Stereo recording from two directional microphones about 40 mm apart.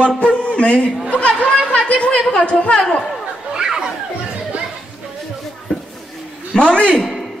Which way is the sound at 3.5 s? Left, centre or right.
Centre.